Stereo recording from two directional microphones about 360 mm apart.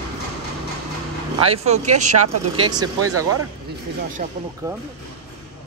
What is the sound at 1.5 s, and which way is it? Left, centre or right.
Speech, centre.